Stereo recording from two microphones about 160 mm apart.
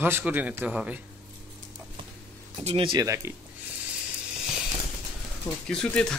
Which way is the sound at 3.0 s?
20° right (ahead or behind).